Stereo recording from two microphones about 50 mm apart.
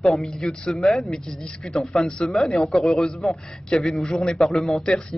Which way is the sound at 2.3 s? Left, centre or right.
Centre.